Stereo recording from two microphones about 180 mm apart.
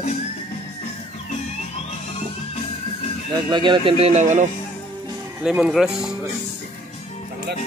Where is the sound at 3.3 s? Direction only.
25° right (ahead or behind); by 4.5 s 40° right (ahead or behind).